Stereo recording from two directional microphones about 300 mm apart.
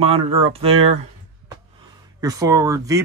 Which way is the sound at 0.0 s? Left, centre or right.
Centre.